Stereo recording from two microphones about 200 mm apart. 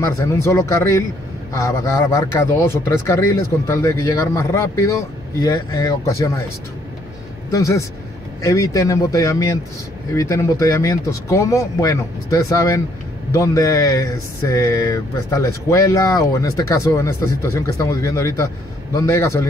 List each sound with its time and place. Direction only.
0.0 s speech: 15° left (ahead or behind)
7.5 s speech: 15° left (ahead or behind)